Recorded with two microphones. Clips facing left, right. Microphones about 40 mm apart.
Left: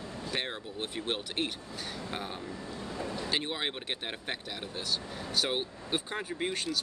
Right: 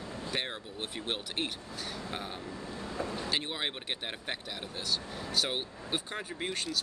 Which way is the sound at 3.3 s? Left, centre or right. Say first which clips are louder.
Left 1 dB; centre.